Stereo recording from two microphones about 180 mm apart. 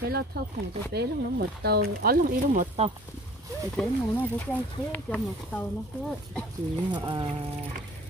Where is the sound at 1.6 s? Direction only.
60° right (ahead or behind); by 2.9 s 40° right (ahead or behind).